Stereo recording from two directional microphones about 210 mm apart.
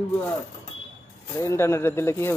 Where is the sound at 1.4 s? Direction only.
10° left (ahead or behind).